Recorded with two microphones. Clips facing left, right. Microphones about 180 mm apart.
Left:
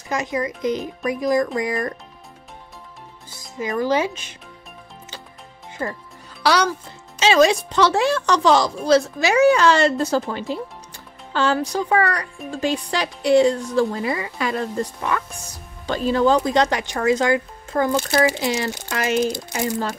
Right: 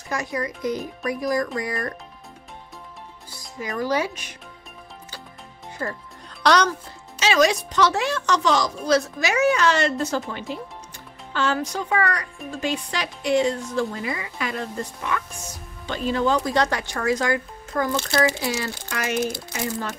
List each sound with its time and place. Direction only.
0.1 s speech: 20° left (ahead or behind)
3.3 s speech: 20° left (ahead or behind)
5.8 s speech: 20° left (ahead or behind)
6.4 s speech: 10° left (ahead or behind)
7.2 s speech: 30° left (ahead or behind)
16.4 s speech: 20° left (ahead or behind)